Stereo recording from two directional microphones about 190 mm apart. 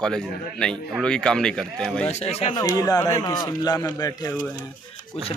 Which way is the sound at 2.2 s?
35° left (ahead or behind).